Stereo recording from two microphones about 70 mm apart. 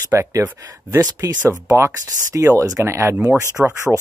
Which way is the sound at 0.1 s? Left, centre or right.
Right.